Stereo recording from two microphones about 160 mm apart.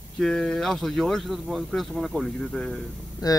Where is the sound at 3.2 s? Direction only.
25° left (ahead or behind).